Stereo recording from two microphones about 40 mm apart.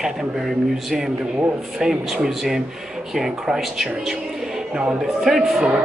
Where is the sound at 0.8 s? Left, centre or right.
Centre.